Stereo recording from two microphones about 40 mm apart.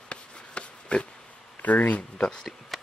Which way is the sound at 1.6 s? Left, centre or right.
Left.